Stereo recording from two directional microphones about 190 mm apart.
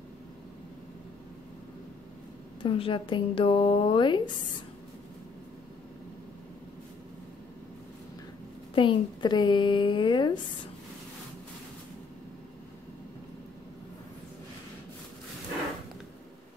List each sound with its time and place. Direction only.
2.6 s speech: 25° left (ahead or behind)
8.7 s speech: 25° left (ahead or behind)